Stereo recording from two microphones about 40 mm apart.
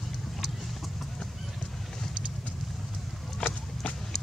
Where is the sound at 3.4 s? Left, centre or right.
Left.